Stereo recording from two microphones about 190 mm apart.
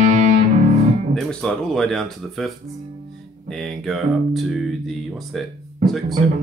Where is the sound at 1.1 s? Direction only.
Centre (ahead or behind).